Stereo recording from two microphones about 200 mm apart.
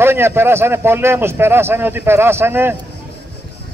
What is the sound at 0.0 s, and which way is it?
Speech, 10° right (ahead or behind).